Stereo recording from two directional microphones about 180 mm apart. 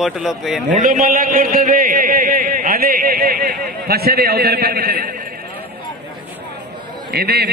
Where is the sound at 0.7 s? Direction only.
50° right (ahead or behind).